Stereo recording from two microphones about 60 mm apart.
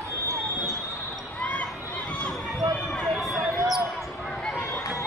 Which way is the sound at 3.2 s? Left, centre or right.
Centre.